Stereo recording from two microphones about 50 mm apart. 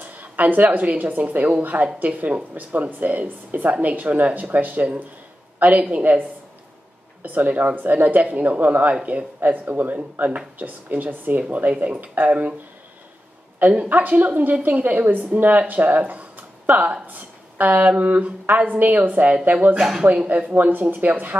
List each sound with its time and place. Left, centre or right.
0.0 s a woman's voice: right
7.2 s a woman's voice: right
13.8 s a woman's voice: right
19.8 s speech: centre
20.2 s a woman's voice: right